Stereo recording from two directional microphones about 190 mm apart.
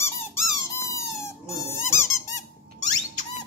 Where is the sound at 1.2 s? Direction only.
15° left (ahead or behind).